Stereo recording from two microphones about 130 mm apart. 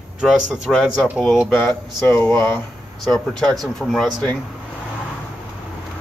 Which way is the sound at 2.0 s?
15° left (ahead or behind).